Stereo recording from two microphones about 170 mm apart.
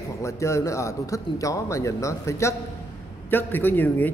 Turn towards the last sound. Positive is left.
turn(degrees=10)  # may be behind; listen again after turning